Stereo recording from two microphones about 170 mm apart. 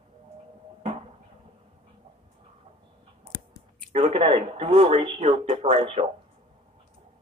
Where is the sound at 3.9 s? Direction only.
35° right (ahead or behind).